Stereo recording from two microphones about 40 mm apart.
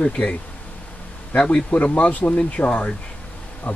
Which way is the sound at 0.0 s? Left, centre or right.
Left.